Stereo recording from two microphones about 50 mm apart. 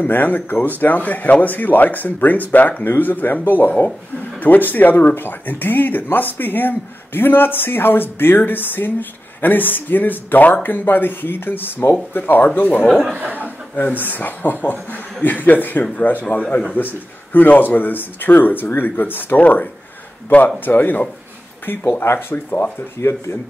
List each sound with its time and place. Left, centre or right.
0.0 s speech: left
13.2 s a man's voice: right
13.7 s speech: left
22.3 s speech: left
22.9 s speech: left